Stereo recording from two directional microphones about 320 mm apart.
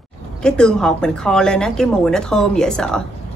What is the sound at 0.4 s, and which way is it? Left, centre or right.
A woman's voice, centre.